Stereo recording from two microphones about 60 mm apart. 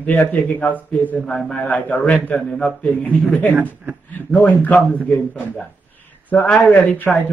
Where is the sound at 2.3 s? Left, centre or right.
Centre.